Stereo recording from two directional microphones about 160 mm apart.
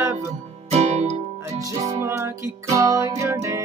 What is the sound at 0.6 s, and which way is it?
Music, 45° right (ahead or behind).